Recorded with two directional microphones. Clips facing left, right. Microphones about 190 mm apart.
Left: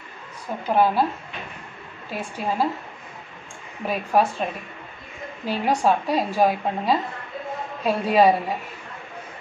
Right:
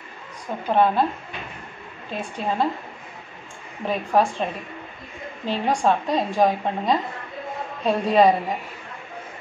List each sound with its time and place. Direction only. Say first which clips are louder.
0.7 s a woman's voice: even; 5° left (ahead or behind)
2.0 s a woman's voice: even; 5° left (ahead or behind)
3.8 s a woman's voice: even; 5° left (ahead or behind)